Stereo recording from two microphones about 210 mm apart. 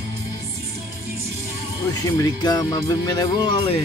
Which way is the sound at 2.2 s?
20° left (ahead or behind).